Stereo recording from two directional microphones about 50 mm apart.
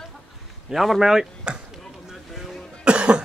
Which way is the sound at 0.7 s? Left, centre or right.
Centre.